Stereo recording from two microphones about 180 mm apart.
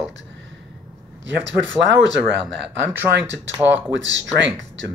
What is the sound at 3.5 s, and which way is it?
Speech, 10° right (ahead or behind).